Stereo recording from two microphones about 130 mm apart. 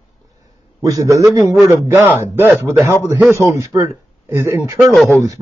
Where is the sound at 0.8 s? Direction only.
25° right (ahead or behind).